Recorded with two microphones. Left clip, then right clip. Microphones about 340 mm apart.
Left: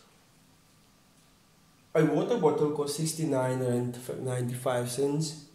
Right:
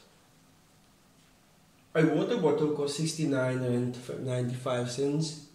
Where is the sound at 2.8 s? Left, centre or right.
Centre.